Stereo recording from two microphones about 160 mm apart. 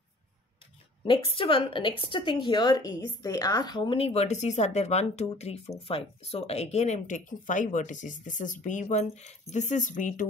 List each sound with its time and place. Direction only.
1.0 s a woman's voice: 35° left (ahead or behind); by 10.2 s 55° left (ahead or behind)